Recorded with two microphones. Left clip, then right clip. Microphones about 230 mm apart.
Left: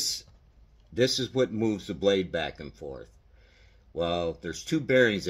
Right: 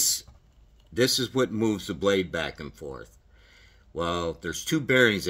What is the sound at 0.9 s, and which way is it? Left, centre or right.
Speech, right.